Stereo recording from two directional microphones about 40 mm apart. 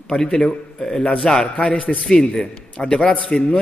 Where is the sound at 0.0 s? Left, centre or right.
Centre.